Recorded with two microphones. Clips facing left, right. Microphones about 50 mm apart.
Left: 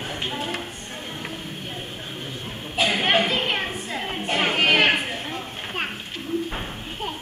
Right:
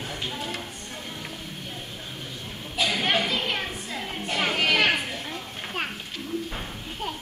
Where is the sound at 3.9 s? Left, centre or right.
Left.